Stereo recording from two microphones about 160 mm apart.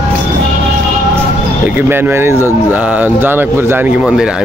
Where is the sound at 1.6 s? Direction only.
10° right (ahead or behind).